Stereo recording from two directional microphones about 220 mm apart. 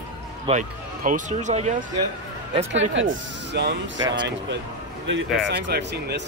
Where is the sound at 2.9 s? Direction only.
60° right (ahead or behind).